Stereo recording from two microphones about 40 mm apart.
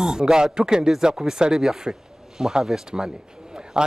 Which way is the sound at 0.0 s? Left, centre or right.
Centre.